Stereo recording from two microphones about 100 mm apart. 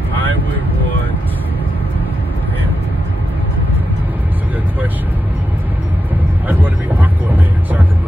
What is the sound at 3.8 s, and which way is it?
Vehicle, 15° right (ahead or behind).